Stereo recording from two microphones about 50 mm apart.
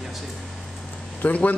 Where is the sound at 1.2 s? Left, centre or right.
Left.